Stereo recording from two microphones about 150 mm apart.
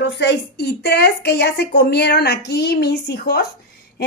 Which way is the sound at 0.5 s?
90° left.